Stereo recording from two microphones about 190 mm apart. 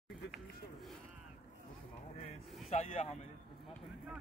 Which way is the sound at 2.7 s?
30° left (ahead or behind).